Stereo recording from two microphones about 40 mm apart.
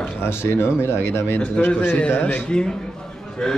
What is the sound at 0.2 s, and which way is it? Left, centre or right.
Speech, left.